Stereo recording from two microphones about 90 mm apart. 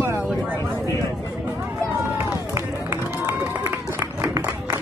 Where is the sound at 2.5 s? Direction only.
30° right (ahead or behind).